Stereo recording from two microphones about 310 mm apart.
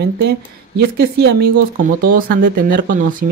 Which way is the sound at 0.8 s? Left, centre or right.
Right.